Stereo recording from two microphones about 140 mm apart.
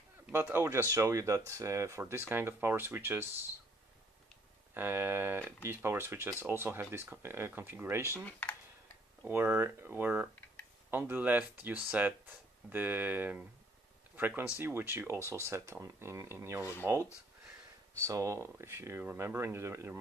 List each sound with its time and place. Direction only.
0.3 s speech: 15° right (ahead or behind)
4.7 s speech: 15° right (ahead or behind)
8.3 s speech: 10° left (ahead or behind)
9.3 s speech: 15° right (ahead or behind)